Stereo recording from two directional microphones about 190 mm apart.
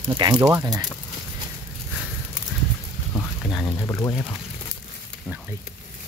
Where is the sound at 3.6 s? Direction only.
15° left (ahead or behind).